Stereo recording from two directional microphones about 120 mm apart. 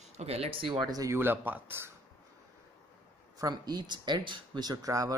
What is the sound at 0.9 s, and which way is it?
Speech, 30° right (ahead or behind).